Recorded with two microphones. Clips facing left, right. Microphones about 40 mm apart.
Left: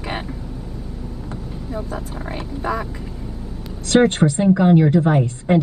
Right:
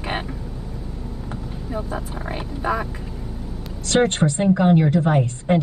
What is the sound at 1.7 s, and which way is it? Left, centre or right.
Speech, centre.